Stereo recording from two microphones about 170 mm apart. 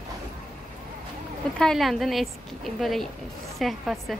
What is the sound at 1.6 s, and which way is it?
A woman's voice, centre (ahead or behind).